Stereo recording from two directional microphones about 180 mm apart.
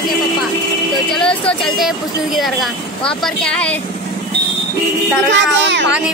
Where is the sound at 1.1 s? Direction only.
5° left (ahead or behind).